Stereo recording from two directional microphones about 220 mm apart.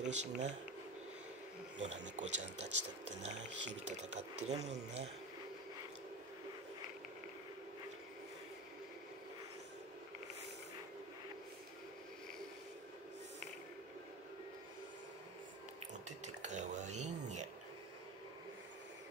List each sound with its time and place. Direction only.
0.0 s speech: 30° right (ahead or behind)
1.8 s speech: 35° right (ahead or behind)
16.4 s dishes: 30° right (ahead or behind)